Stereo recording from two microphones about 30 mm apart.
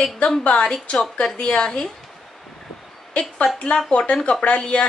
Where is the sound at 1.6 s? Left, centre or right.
Left.